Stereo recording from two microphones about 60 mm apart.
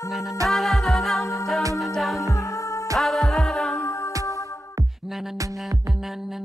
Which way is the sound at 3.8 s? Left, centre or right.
Left.